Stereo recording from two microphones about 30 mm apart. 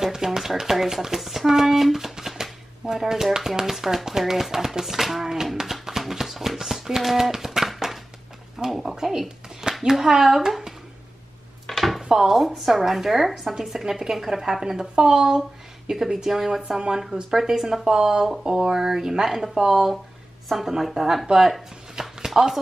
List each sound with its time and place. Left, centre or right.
0.0 s chopping: centre
0.6 s a woman's voice: centre
5.6 s a sound: centre
8.6 s a woman's voice: centre
11.6 s chopping: centre
12.0 s chopping: right
12.3 s a woman's voice: centre
22.0 s a sound: centre